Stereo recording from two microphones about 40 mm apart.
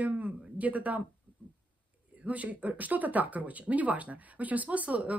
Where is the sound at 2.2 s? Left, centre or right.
Right.